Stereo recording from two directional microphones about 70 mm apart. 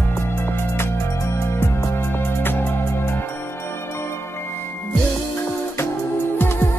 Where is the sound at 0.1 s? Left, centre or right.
Left.